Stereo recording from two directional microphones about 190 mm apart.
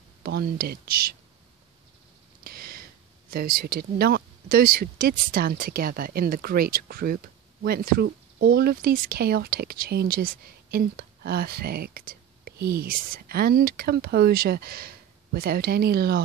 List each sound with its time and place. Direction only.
0.2 s speech: 55° right (ahead or behind)
2.4 s speech: 50° right (ahead or behind)